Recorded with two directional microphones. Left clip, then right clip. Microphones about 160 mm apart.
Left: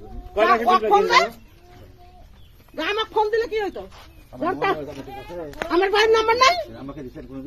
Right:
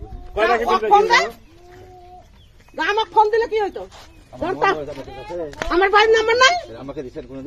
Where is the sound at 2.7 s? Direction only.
20° right (ahead or behind).